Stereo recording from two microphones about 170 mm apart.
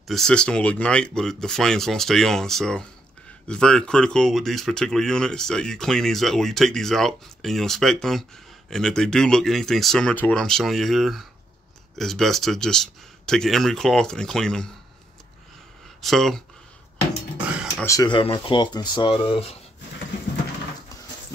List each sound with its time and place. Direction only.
0.0 s speech: centre (ahead or behind)
16.0 s speech: centre (ahead or behind)
17.8 s speech: 25° left (ahead or behind)